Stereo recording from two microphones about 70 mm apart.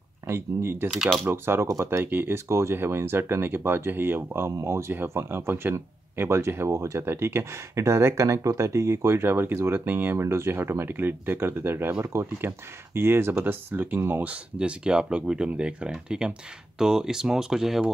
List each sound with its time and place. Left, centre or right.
0.3 s speech: right
4.5 s speech: right
14.3 s speech: centre